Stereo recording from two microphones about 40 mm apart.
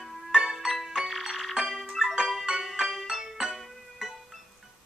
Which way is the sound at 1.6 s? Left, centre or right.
Centre.